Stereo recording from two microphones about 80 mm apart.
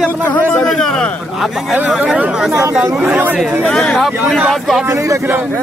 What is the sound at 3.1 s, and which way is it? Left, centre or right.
Speech, right.